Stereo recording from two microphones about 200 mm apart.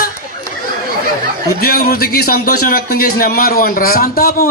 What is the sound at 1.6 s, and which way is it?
A man's voice, 50° left (ahead or behind).